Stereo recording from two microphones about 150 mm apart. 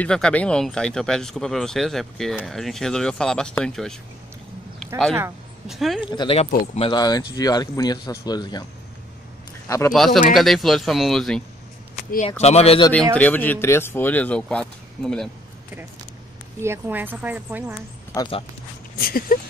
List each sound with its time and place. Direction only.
0.0 s speech: 5° left (ahead or behind)
4.7 s a sound: 5° left (ahead or behind)
5.7 s speech: centre (ahead or behind)
6.0 s speech: 35° left (ahead or behind)
7.0 s speech: 25° left (ahead or behind)
9.7 s speech: 20° left (ahead or behind)
9.9 s speech: centre (ahead or behind)
12.3 s speech: 45° left (ahead or behind)
12.9 s speech: 10° left (ahead or behind)
16.5 s speech: 15° right (ahead or behind)
18.1 s speech: 30° left (ahead or behind)
18.9 s speech: 75° left (ahead or behind)